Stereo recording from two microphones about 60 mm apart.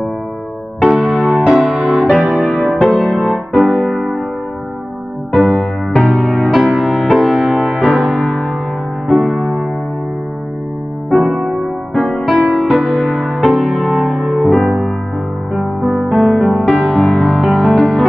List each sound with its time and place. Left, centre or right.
0.8 s music: centre
2.0 s music: centre
5.3 s music: centre
6.7 s music: centre
8.2 s music: centre
11.1 s music: centre